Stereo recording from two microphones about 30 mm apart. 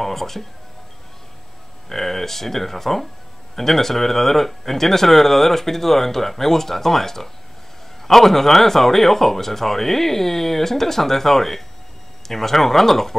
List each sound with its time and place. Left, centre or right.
0.0 s speech: centre
1.9 s speech: centre